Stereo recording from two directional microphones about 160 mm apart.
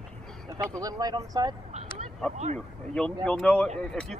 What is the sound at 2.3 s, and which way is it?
Speech, 45° right (ahead or behind).